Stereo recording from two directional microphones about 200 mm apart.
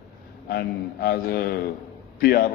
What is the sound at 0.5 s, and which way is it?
A man's voice, 50° left (ahead or behind).